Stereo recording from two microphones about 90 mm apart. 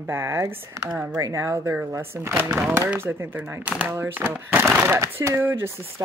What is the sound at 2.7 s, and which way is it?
Speech, 20° right (ahead or behind).